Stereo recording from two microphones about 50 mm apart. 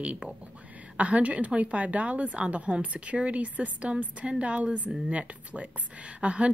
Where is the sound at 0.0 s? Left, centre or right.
Right.